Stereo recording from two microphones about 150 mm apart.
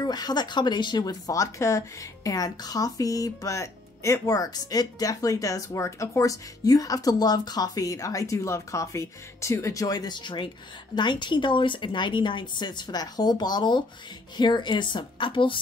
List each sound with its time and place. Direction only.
0.0 s speech: 25° left (ahead or behind)